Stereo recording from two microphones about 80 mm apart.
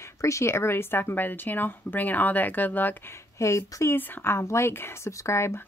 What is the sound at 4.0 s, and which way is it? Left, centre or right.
Speech, left.